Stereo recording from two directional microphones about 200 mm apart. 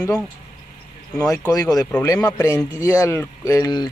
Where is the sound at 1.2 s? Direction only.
15° left (ahead or behind).